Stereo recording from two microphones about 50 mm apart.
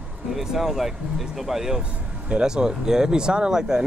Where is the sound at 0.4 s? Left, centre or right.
Centre.